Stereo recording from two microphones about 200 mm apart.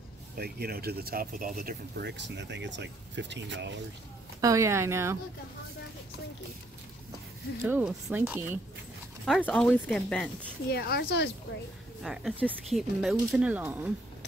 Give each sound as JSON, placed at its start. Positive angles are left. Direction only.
{"t": 0.4, "sound": "speech", "side_deg": -50}
{"t": 4.4, "sound": "speech", "side_deg": -15}
{"t": 7.6, "sound": "speech", "side_deg": -10}
{"t": 9.2, "sound": "speech", "side_deg": 5}
{"t": 10.7, "sound": "speech", "side_deg": 55}
{"t": 12.0, "sound": "speech", "side_deg": 0}